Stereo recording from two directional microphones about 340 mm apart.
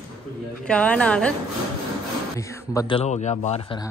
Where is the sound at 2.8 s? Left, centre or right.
Centre.